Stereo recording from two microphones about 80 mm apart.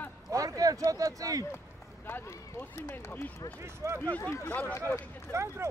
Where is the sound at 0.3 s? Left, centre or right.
Right.